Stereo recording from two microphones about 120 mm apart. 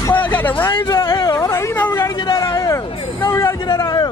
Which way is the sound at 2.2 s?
30° left (ahead or behind).